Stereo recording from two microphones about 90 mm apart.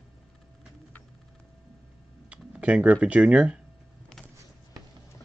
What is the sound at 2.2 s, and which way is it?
Speech, 15° right (ahead or behind).